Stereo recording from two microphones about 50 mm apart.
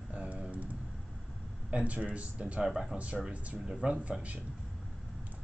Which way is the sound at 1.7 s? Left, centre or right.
Right.